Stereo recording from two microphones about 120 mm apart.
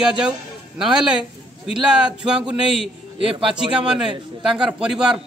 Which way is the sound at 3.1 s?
50° right (ahead or behind).